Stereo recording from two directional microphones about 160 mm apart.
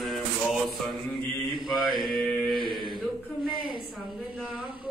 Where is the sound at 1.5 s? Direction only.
30° right (ahead or behind).